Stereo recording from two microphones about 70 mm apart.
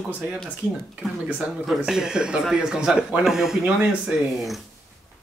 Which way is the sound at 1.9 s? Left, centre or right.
Centre.